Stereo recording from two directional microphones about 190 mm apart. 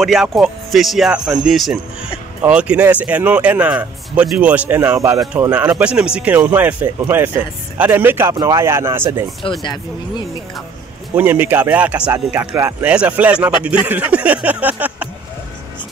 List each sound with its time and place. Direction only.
0.0 s speech: centre (ahead or behind)
9.4 s speech: 25° left (ahead or behind)
11.1 s speech: 10° right (ahead or behind)